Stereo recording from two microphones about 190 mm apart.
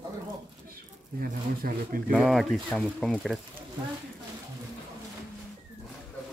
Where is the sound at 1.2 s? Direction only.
50° right (ahead or behind).